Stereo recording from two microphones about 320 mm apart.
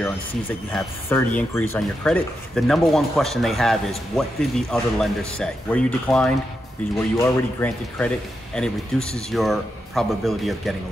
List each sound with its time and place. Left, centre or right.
0.0 s speech: centre